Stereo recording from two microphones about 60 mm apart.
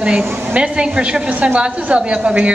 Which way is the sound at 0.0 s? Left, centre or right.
Centre.